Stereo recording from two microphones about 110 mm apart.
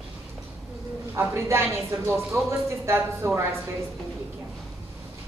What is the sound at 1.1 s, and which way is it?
A woman's voice, 20° right (ahead or behind).